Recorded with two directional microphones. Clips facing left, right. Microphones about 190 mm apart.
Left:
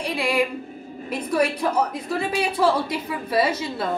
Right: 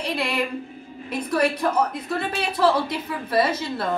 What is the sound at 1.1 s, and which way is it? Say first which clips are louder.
A woman's voice: even; 10° left (ahead or behind).